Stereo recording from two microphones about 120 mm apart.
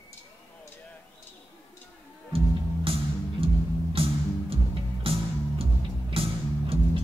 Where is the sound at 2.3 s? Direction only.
50° right (ahead or behind).